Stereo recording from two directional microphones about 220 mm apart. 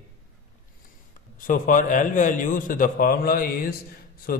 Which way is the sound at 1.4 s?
35° left (ahead or behind).